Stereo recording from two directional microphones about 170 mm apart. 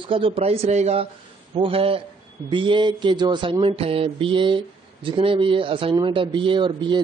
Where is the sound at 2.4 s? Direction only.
30° right (ahead or behind).